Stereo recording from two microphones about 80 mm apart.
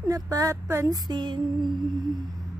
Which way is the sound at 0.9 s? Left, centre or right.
Right.